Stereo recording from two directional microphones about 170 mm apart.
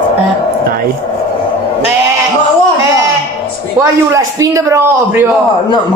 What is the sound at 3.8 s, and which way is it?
Speech, 20° right (ahead or behind).